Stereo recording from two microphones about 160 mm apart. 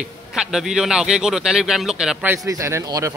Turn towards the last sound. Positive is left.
turn(degrees=-20)  # may be behind; listen again after turning